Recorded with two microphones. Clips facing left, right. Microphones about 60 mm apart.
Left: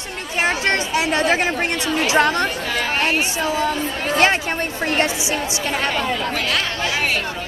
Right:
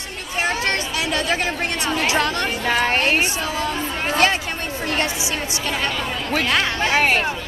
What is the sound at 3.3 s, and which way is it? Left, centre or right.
Speech, left.